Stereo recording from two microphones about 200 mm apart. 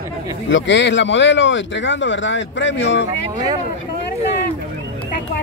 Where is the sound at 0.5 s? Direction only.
65° left (ahead or behind).